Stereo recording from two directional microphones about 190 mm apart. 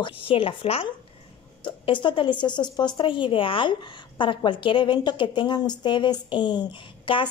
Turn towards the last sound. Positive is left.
turn(degrees=25)  # may be behind; listen again after turning